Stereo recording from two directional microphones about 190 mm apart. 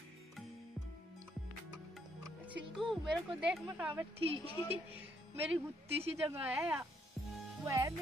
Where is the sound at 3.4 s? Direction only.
5° right (ahead or behind).